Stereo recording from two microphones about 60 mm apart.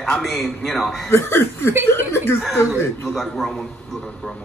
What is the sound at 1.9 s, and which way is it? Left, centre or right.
Speech, left.